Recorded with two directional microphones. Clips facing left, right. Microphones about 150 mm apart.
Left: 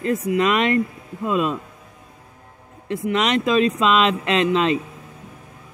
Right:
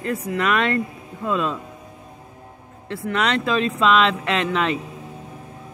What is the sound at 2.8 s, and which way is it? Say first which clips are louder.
Speech: left 2 dB; 15° left (ahead or behind).